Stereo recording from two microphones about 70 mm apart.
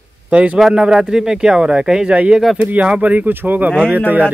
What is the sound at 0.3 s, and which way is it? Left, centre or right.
Speech, centre.